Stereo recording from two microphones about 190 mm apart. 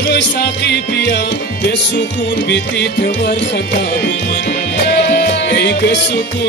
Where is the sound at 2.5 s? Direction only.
65° left (ahead or behind).